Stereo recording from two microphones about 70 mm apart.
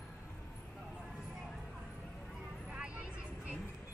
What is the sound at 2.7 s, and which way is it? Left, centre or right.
Vehicle, centre.